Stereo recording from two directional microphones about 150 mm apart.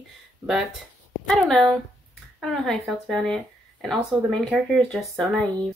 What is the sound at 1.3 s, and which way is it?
Speech, centre (ahead or behind).